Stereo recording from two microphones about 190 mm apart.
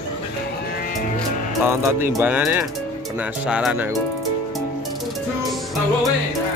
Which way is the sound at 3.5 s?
5° right (ahead or behind).